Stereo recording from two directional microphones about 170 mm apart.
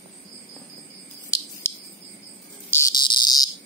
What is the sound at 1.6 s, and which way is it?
Cricket, 15° left (ahead or behind).